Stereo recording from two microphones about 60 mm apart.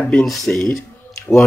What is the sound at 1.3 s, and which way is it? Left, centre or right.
Speech, centre.